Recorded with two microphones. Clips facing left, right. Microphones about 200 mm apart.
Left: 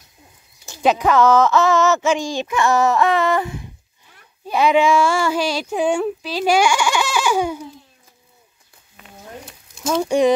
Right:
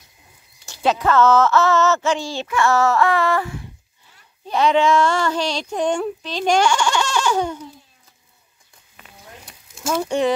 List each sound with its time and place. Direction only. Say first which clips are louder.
0.7 s speech: left 2 dB; 15° left (ahead or behind)
10.0 s speech: left 5 dB; 10° left (ahead or behind)